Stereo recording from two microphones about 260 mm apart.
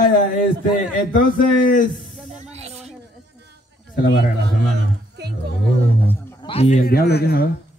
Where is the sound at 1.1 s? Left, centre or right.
Left.